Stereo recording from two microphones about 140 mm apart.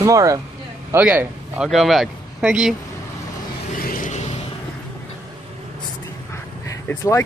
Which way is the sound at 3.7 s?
80° left.